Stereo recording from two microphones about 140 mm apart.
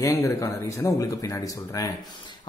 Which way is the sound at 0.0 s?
20° left (ahead or behind).